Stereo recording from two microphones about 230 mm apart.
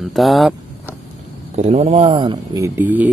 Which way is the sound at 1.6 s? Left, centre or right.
Right.